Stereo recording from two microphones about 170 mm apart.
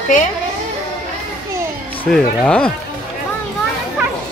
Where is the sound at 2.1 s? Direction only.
5° left (ahead or behind).